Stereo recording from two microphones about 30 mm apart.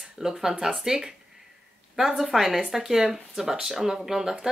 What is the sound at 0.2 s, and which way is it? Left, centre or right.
Speech, centre.